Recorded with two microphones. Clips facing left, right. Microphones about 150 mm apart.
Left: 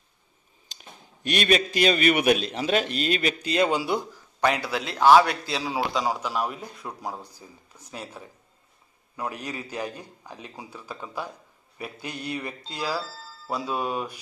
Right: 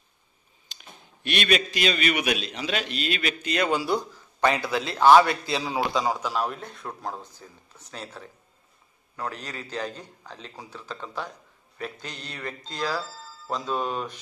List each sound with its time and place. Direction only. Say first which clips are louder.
1.2 s a man's voice: left 2 dB; 40° left (ahead or behind)
3.4 s a man's voice: even; 25° left (ahead or behind)
4.5 s a man's voice: right 1 dB; 10° left (ahead or behind)